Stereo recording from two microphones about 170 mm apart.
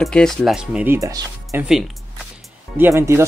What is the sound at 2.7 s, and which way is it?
Speech, 15° right (ahead or behind).